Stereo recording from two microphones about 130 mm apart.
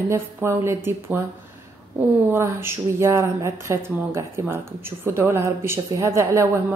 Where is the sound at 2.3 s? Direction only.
20° right (ahead or behind).